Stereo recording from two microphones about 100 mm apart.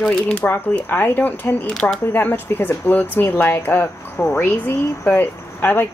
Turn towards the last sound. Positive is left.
turn(degrees=20)  # may be behind; listen again after turning